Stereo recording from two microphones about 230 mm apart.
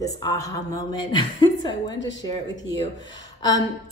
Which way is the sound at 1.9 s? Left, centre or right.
Left.